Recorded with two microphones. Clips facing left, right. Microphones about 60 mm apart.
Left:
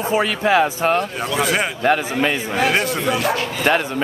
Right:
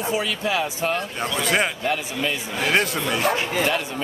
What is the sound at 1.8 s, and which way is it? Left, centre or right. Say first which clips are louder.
Speech: left 7 dB; left.